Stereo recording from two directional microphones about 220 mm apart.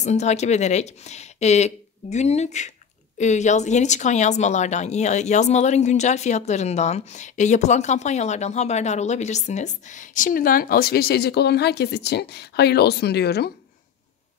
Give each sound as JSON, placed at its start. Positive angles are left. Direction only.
{"t": 0.0, "sound": "speech", "side_deg": 30}